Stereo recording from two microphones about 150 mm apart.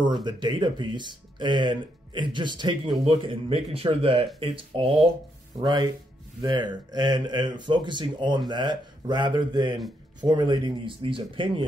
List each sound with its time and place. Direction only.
0.2 s speech: 30° right (ahead or behind)